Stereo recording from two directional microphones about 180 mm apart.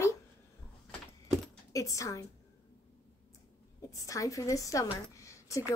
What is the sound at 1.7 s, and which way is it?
Speech, 20° left (ahead or behind).